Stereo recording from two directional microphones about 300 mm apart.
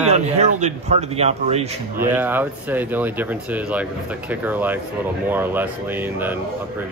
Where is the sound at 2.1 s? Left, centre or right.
Centre.